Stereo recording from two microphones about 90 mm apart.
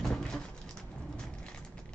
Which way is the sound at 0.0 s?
5° left (ahead or behind).